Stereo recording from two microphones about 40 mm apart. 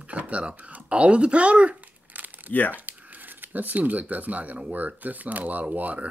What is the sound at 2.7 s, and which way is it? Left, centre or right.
Speech, right.